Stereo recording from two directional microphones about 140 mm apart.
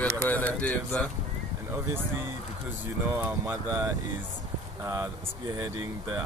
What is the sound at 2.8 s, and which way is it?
Speech, 15° right (ahead or behind).